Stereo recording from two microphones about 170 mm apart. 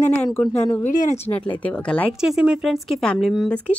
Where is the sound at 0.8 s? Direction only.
45° left (ahead or behind).